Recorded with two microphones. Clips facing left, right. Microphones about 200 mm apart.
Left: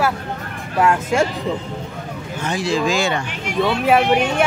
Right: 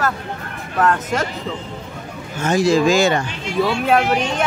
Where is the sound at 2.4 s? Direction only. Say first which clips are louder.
Right 5 dB; 45° right (ahead or behind).